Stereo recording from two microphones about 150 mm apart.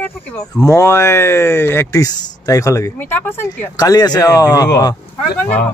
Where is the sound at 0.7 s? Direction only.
20° left (ahead or behind).